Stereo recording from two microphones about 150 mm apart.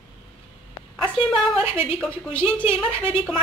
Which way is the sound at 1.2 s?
40° left (ahead or behind).